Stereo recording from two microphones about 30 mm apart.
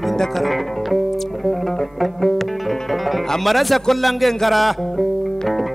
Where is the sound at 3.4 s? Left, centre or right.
Centre.